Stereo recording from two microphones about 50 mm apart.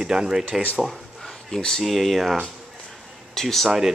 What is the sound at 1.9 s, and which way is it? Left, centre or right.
Speech, centre.